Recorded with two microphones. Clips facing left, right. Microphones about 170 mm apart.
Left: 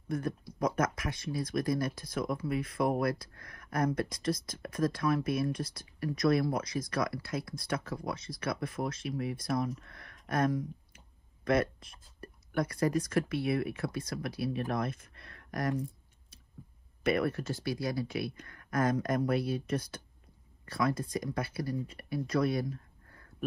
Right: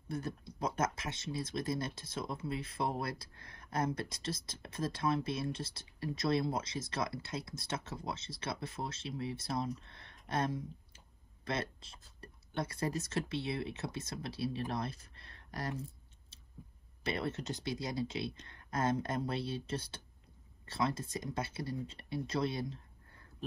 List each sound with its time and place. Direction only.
0.1 s speech: 25° right (ahead or behind)
17.0 s speech: 25° right (ahead or behind)